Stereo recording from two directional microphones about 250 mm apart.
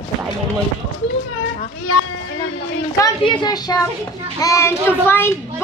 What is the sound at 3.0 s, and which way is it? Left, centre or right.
A child's voice, centre.